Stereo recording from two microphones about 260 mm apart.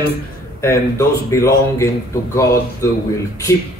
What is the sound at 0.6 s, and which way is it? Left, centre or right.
A man's voice, centre.